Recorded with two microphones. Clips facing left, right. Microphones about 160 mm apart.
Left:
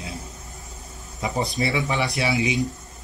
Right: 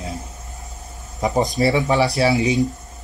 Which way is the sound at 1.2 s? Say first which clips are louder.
Right 7 dB; 40° right (ahead or behind).